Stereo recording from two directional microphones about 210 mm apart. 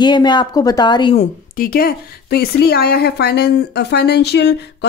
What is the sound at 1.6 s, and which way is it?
Speech, 45° left (ahead or behind).